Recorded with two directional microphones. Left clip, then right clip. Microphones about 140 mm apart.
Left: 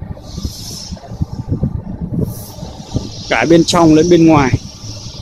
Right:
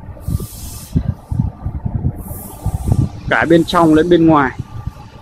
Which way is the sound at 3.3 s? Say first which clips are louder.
Left 1 dB; 15° left (ahead or behind).